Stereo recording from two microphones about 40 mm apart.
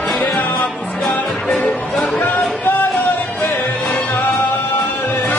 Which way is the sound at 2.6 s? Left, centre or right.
Left.